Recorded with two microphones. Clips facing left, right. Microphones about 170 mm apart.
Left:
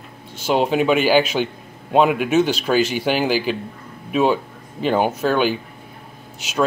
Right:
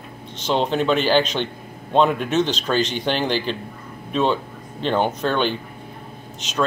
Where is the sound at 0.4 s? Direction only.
10° left (ahead or behind).